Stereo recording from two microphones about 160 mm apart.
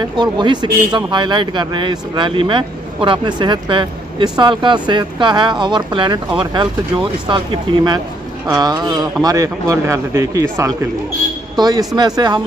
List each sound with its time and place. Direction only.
0.2 s speech: 30° right (ahead or behind)